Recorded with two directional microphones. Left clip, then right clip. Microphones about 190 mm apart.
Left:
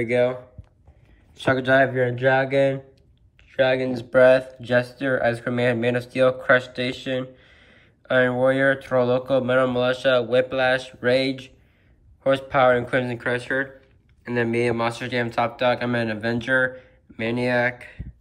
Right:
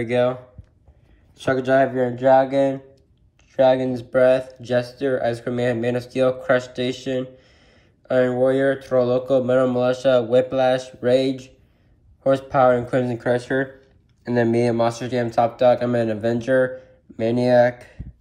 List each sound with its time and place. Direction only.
0.0 s speech: centre (ahead or behind)
1.4 s speech: 10° right (ahead or behind)